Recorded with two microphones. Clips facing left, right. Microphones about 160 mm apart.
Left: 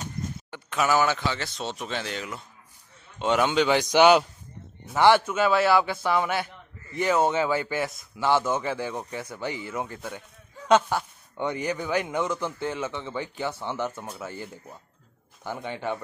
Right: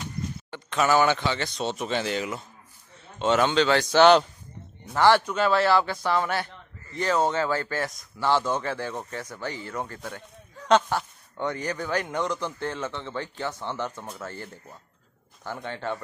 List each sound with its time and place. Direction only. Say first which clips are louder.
0.5 s speech: right 2 dB; 10° left (ahead or behind)
3.2 s speech: right 1 dB; 10° left (ahead or behind)